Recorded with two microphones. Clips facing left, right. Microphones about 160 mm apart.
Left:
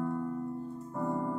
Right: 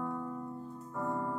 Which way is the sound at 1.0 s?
30° left (ahead or behind).